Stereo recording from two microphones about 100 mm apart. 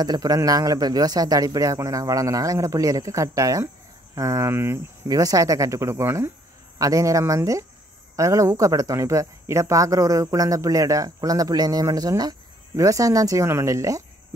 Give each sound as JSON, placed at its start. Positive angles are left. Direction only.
{"t": 0.0, "sound": "speech", "side_deg": -40}
{"t": 5.0, "sound": "speech", "side_deg": -40}